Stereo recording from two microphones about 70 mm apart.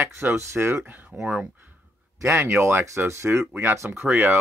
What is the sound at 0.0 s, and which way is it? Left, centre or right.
Speech, right.